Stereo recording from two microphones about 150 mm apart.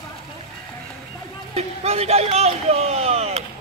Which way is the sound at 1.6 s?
45° right (ahead or behind).